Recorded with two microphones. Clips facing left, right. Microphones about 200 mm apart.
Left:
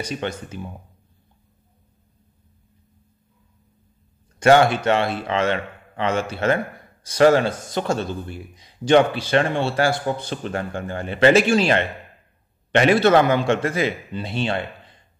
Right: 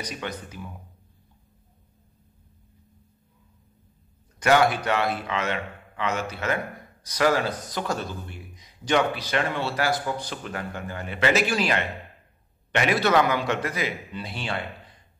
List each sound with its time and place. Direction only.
0.0 s a man's voice: 25° left (ahead or behind)
4.4 s a man's voice: 30° left (ahead or behind)